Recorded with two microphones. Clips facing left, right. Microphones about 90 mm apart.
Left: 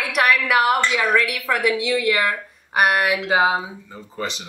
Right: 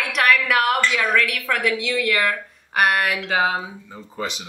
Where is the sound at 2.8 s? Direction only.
5° left (ahead or behind).